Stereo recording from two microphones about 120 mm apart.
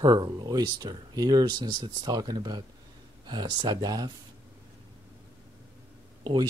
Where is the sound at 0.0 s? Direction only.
35° right (ahead or behind).